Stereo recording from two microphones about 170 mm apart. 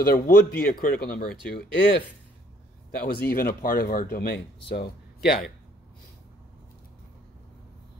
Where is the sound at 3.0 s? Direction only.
60° left (ahead or behind).